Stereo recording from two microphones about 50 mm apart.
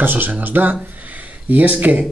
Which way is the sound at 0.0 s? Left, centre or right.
Right.